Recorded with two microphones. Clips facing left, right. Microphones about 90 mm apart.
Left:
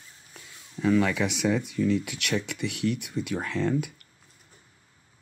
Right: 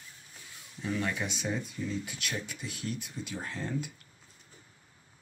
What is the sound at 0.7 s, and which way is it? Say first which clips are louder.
Speech: left 10 dB; 90° left.